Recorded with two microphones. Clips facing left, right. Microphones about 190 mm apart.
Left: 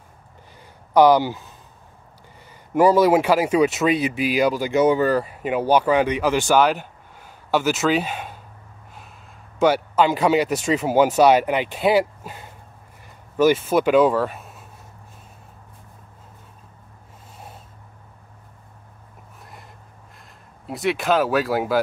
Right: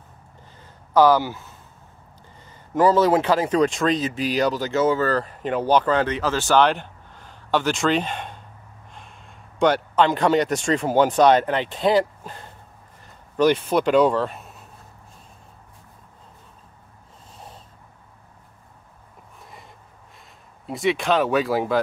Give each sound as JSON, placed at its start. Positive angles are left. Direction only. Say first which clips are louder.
{"t": 0.9, "sound": "speech", "louder": "left 2 dB", "side_deg": 15}
{"t": 2.7, "sound": "speech", "louder": "left 2 dB", "side_deg": 10}
{"t": 9.6, "sound": "speech", "louder": "left 1 dB", "side_deg": 5}
{"t": 19.4, "sound": "a sound", "louder": "even", "side_deg": 0}
{"t": 20.2, "sound": "speech", "louder": "left 1 dB", "side_deg": 0}